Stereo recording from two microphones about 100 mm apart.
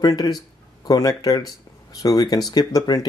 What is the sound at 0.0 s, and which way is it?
Speech, 40° left (ahead or behind).